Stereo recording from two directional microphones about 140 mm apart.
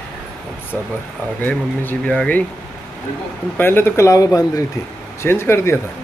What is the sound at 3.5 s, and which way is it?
Speech, 15° left (ahead or behind).